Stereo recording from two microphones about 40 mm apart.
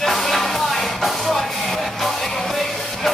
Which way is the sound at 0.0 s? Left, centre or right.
Centre.